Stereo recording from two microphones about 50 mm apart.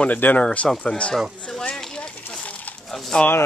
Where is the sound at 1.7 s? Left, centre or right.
Centre.